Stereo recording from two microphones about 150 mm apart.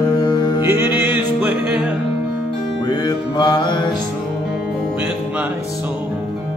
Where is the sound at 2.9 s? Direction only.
25° left (ahead or behind).